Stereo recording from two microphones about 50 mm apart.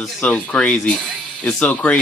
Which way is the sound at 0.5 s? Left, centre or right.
Left.